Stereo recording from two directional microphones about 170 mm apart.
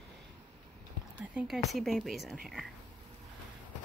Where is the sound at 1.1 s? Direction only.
5° right (ahead or behind).